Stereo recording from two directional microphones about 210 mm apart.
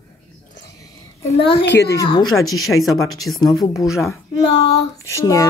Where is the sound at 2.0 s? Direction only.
20° left (ahead or behind).